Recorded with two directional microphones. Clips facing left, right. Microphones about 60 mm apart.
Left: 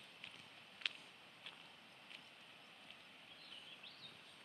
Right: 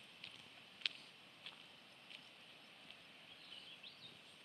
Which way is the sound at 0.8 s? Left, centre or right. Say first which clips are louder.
Even; centre.